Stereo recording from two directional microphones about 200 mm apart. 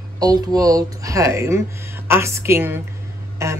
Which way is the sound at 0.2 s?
20° right (ahead or behind).